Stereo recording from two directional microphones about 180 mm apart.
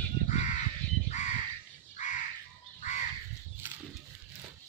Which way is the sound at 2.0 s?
45° left (ahead or behind).